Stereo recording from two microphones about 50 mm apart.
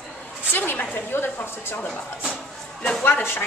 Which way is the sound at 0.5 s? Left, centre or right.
Left.